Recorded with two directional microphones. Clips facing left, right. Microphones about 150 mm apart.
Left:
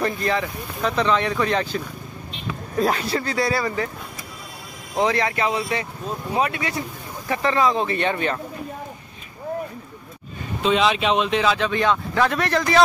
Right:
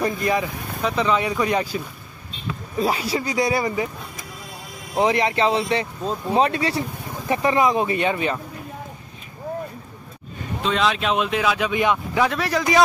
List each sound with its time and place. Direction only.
0.0 s speech: 15° right (ahead or behind)
2.8 s speech: 10° right (ahead or behind)
4.9 s speech: 20° right (ahead or behind)
7.2 s speech: 20° right (ahead or behind)
10.6 s speech: centre (ahead or behind)